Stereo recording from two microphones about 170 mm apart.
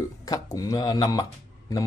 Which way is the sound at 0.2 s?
20° left (ahead or behind).